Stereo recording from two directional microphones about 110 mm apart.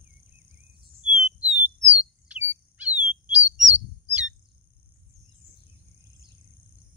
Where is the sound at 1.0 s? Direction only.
60° left (ahead or behind).